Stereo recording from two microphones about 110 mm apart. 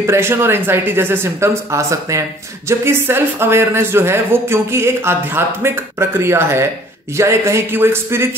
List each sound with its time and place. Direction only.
0.0 s speech: 25° right (ahead or behind)